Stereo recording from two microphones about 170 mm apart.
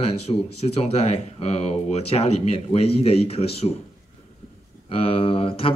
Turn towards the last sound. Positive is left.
turn(degrees=35)  # may be behind; listen again after turning